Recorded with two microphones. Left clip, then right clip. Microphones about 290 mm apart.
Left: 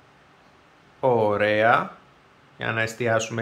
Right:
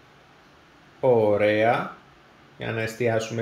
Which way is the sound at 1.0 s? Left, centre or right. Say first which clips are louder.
Right 1 dB; left.